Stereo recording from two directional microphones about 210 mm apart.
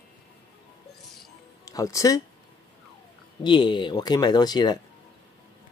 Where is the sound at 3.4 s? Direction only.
20° left (ahead or behind).